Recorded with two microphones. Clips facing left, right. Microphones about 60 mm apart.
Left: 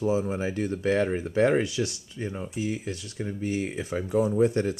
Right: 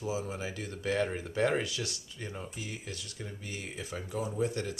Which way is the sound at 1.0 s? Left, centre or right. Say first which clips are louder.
Left 7 dB; left.